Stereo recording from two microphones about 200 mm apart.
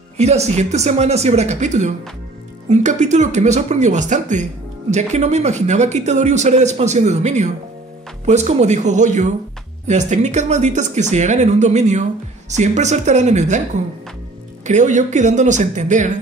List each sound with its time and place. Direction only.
0.2 s speech: 35° right (ahead or behind)
14.6 s speech: 35° right (ahead or behind)